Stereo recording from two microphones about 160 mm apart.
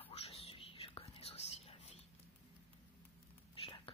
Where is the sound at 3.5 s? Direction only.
35° left (ahead or behind).